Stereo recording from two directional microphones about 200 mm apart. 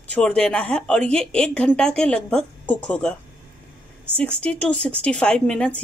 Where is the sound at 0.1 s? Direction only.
5° left (ahead or behind).